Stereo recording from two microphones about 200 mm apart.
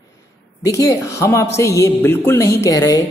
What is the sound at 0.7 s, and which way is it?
Speech, 15° left (ahead or behind).